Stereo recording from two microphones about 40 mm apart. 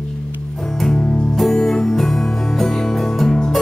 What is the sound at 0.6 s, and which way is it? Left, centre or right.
Music, centre.